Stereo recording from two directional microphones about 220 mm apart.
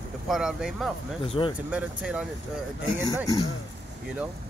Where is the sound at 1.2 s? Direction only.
25° left (ahead or behind).